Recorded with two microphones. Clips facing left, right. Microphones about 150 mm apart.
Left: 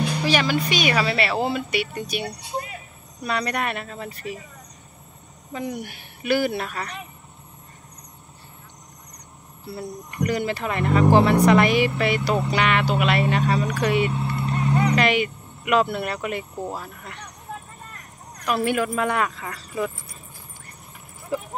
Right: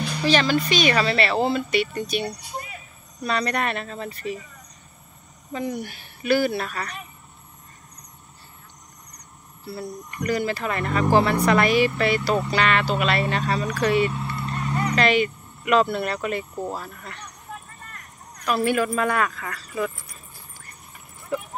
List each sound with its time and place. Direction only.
0.2 s speech: 10° left (ahead or behind)
5.5 s speech: 10° left (ahead or behind)
9.7 s speech: 20° left (ahead or behind)
18.4 s speech: 15° left (ahead or behind)